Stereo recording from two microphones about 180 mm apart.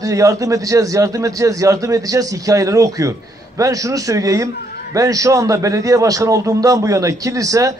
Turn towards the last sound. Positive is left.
turn(degrees=-20)  # may be behind; listen again after turning